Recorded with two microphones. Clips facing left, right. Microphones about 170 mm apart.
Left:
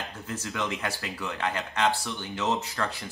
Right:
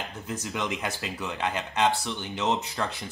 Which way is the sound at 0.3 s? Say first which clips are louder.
Right 1 dB; 15° right (ahead or behind).